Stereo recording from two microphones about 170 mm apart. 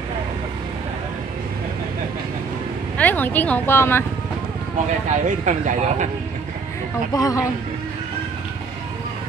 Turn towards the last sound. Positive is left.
turn(degrees=20)  # may be behind; listen again after turning